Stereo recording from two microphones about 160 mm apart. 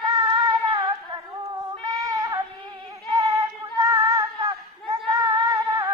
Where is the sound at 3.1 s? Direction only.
20° right (ahead or behind).